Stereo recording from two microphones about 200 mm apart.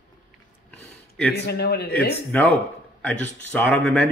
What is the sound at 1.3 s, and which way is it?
Speech, 55° left (ahead or behind).